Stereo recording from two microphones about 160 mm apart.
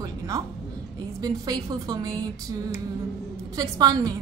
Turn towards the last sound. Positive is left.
turn(degrees=-25)  # may be behind; listen again after turning